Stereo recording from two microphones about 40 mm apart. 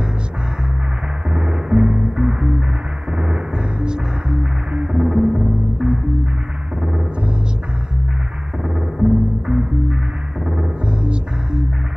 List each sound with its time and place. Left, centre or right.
1.3 s music: right
8.6 s music: centre